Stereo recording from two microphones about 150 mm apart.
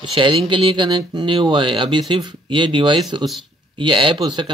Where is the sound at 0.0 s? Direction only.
35° right (ahead or behind).